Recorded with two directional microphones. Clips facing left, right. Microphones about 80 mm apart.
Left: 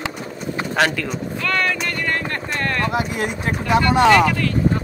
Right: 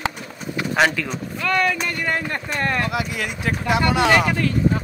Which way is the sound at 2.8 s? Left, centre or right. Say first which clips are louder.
Left 3 dB; left.